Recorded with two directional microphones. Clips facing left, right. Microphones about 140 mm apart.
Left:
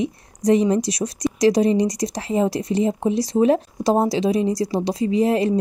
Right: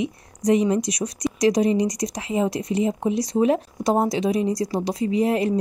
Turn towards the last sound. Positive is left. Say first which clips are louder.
# left 2 dB
turn(degrees=30)  # may be behind; listen again after turning